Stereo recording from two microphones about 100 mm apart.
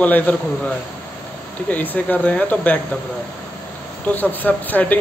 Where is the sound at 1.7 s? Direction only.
15° left (ahead or behind).